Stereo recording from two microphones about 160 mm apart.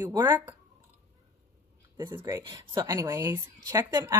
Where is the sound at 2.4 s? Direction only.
25° right (ahead or behind).